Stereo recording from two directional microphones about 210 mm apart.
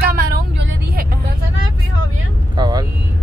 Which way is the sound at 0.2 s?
45° right (ahead or behind).